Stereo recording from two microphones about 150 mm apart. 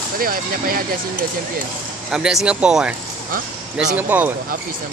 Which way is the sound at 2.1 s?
5° right (ahead or behind).